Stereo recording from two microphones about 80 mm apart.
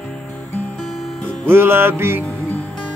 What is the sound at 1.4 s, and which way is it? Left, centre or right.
Music, right.